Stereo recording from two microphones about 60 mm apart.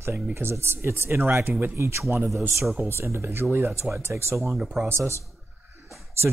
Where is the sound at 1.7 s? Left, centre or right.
Right.